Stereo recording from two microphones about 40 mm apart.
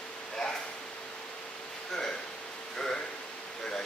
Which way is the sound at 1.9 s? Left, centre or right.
Centre.